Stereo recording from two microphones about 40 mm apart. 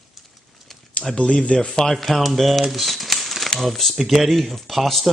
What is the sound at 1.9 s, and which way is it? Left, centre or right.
Speech, centre.